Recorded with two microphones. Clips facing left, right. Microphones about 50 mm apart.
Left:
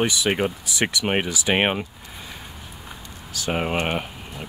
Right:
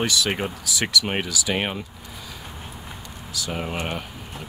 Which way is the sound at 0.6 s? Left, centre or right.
Left.